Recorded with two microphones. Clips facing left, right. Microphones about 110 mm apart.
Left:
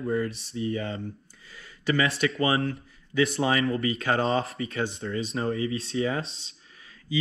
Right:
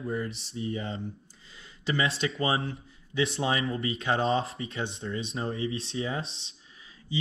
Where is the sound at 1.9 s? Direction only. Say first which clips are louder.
Left 3 dB; 25° right (ahead or behind).